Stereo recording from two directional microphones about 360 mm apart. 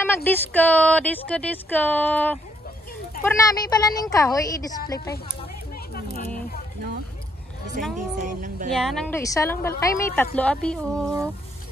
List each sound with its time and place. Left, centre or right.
0.0 s a woman's voice: centre
7.8 s speech: right
8.2 s a sound: right
8.7 s speech: centre